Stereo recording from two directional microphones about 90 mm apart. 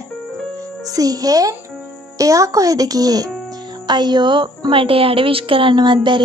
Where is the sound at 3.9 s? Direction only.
55° right (ahead or behind).